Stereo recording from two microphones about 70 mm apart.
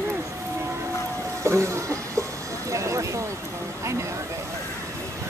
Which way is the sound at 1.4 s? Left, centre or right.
Right.